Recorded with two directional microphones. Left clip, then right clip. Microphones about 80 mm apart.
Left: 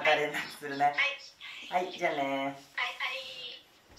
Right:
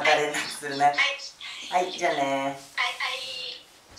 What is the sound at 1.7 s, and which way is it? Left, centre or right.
A woman's voice, centre.